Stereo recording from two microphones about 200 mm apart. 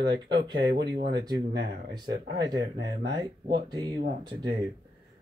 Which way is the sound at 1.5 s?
55° right (ahead or behind).